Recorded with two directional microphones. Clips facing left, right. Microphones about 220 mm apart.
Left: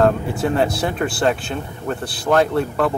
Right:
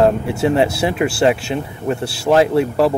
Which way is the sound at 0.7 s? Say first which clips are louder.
Right 4 dB; 5° right (ahead or behind).